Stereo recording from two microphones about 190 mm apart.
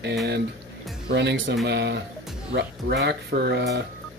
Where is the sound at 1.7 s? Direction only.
60° right (ahead or behind).